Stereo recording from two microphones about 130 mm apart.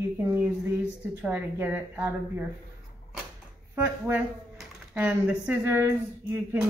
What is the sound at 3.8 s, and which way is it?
A woman's voice, 20° right (ahead or behind).